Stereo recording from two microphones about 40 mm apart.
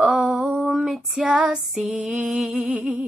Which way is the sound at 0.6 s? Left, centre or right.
Centre.